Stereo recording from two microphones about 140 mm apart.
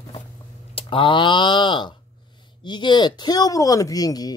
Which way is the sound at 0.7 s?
40° left (ahead or behind).